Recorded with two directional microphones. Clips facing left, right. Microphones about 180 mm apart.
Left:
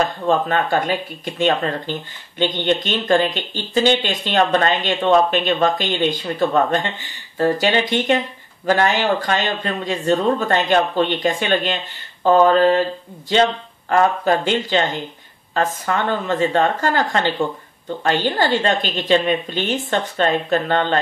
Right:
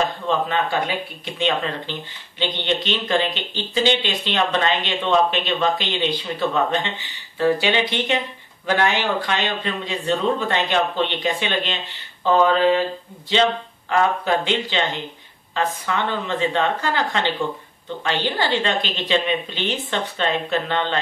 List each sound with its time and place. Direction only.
0.3 s speech: 45° left (ahead or behind)